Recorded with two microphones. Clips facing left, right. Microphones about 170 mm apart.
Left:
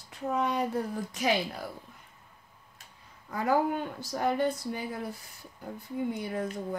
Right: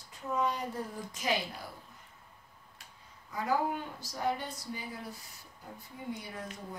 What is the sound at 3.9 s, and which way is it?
Speech, 60° left (ahead or behind).